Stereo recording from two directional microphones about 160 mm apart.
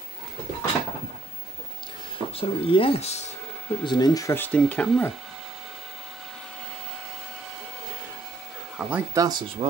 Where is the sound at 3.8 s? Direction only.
25° left (ahead or behind); by 5.1 s 5° left (ahead or behind).